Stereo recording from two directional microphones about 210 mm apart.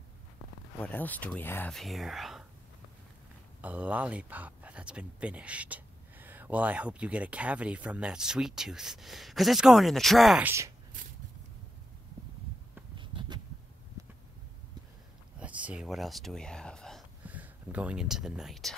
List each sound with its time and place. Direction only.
0.7 s speech: 5° left (ahead or behind)
3.6 s speech: 5° right (ahead or behind)
12.9 s a sound: 20° right (ahead or behind)
15.3 s speech: 5° right (ahead or behind)